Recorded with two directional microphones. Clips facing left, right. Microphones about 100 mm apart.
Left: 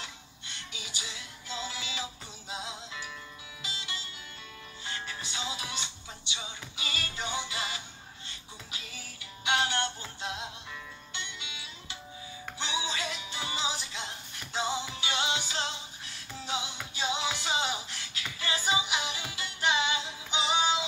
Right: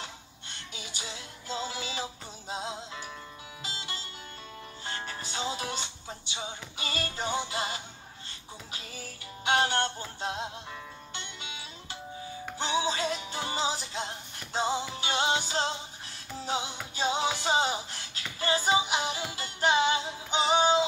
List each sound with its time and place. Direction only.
0.0 s music: 40° right (ahead or behind)